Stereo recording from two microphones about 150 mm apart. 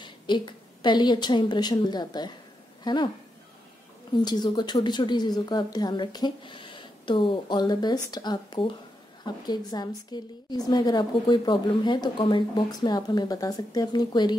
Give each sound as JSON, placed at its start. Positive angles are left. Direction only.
{"t": 0.3, "sound": "a woman's voice", "side_deg": 30}
{"t": 4.1, "sound": "a woman's voice", "side_deg": 30}